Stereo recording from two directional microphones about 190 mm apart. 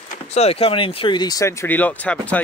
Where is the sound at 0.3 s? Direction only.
35° left (ahead or behind).